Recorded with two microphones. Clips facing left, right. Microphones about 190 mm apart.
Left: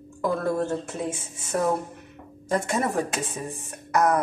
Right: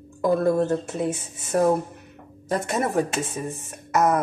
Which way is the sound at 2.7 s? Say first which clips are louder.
Right 2 dB; centre (ahead or behind).